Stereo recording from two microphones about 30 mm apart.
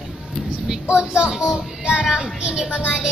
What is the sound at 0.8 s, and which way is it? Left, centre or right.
A child's voice, right.